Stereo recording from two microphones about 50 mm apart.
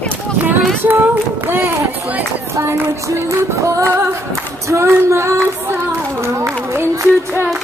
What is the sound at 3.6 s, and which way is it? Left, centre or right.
Music, right.